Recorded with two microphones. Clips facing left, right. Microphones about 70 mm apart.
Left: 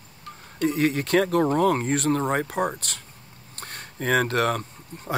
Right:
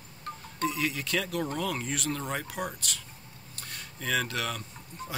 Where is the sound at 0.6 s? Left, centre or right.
Left.